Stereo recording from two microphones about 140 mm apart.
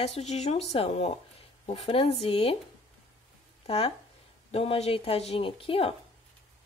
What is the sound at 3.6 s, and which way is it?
Speech, 45° left (ahead or behind).